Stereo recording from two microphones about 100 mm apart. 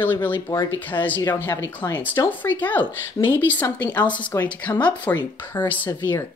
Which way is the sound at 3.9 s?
20° left (ahead or behind).